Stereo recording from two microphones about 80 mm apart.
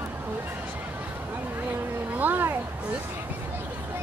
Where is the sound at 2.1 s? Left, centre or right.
Right.